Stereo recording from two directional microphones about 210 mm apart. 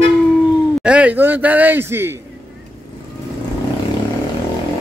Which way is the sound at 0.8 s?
5° right (ahead or behind).